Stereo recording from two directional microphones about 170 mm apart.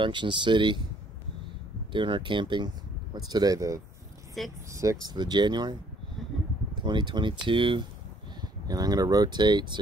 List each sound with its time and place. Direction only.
0.0 s speech: 30° right (ahead or behind)
1.9 s speech: 30° right (ahead or behind)
4.4 s speech: centre (ahead or behind)
5.0 s speech: 25° right (ahead or behind)